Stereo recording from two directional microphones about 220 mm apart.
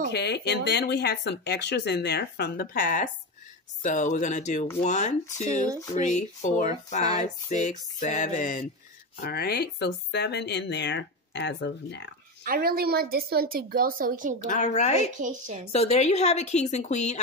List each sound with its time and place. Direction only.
0.1 s speech: 50° left (ahead or behind)
9.2 s speech: 45° left (ahead or behind)
12.4 s a woman's voice: 45° right (ahead or behind)
14.5 s speech: 30° left (ahead or behind)
15.1 s a woman's voice: 35° right (ahead or behind)
15.7 s speech: 30° left (ahead or behind)